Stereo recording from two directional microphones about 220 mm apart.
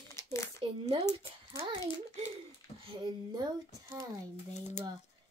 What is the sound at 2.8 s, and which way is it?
Speech, 20° right (ahead or behind).